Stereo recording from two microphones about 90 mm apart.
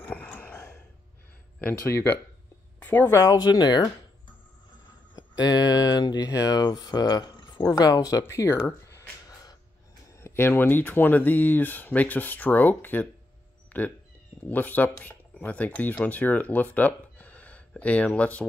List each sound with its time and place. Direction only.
0.0 s a sound: 15° left (ahead or behind)
1.6 s speech: 25° left (ahead or behind)
3.2 s speech: 45° left (ahead or behind)
5.1 s speech: 50° left (ahead or behind)
10.1 s speech: 25° left (ahead or behind)
13.7 s a sound: 20° left (ahead or behind)
14.4 s speech: 20° left (ahead or behind)